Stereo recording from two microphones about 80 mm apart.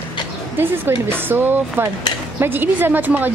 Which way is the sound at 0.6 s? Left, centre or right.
Right.